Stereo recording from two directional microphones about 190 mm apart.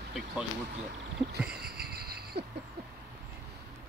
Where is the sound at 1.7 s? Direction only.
55° right (ahead or behind).